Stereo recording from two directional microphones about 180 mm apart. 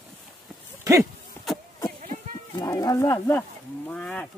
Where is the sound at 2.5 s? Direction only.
20° left (ahead or behind).